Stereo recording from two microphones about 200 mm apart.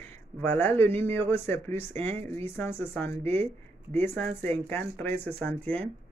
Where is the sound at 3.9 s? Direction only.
10° left (ahead or behind).